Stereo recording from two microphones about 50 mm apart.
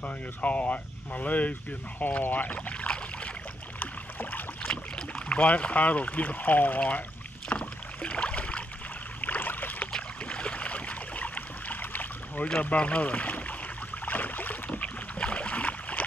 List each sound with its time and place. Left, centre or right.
0.0 s speech: left
3.8 s boat: left
4.6 s speech: centre; by 7.0 s left
7.4 s rowboat: left
9.2 s boat: left
9.9 s boat: left
12.6 s speech: left
14.0 s boat: left
14.7 s boat: left